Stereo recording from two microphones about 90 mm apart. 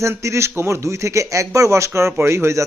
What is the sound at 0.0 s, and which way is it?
A man's voice, 35° right (ahead or behind).